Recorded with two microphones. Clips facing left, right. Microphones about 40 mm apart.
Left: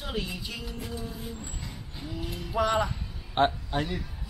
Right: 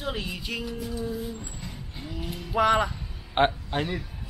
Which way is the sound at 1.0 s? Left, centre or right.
Centre.